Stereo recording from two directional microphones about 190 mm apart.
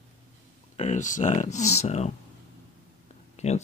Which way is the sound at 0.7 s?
40° left (ahead or behind).